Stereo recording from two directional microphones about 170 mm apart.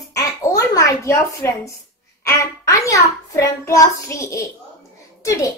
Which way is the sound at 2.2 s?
20° left (ahead or behind).